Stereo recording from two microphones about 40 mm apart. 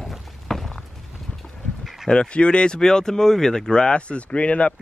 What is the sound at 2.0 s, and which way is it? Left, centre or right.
Speech, left.